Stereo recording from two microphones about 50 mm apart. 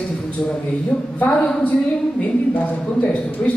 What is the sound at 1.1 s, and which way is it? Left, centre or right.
Speech, left.